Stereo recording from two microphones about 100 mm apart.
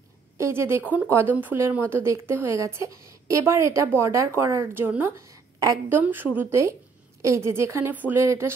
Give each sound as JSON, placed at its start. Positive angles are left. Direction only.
{"t": 0.4, "sound": "a woman's voice", "side_deg": -25}
{"t": 5.2, "sound": "a sound", "side_deg": -35}
{"t": 5.9, "sound": "a woman's voice", "side_deg": -20}